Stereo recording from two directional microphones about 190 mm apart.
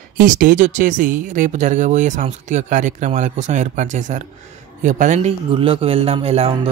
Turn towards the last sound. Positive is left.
turn(degrees=-30)  # may be behind; listen again after turning